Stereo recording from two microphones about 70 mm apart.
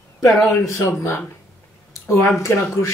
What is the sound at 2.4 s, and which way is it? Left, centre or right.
Speech, left.